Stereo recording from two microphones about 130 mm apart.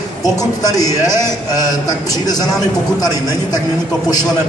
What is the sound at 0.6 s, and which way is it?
A man's voice, 30° left (ahead or behind).